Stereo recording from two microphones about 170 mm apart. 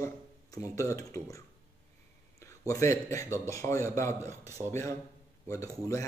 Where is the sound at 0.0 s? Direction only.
20° left (ahead or behind).